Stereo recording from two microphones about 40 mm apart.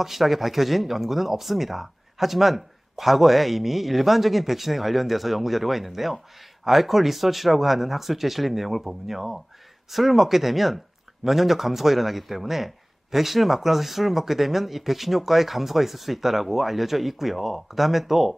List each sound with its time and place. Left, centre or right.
0.0 s speech: centre